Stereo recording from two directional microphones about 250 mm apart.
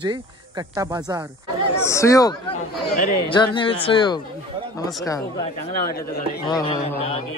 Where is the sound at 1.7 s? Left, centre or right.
Centre.